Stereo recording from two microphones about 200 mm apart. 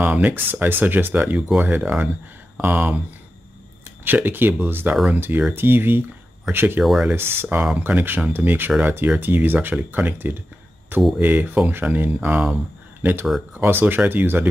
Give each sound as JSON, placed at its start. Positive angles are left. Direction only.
{"t": 0.0, "sound": "speech", "side_deg": -10}
{"t": 4.0, "sound": "speech", "side_deg": -10}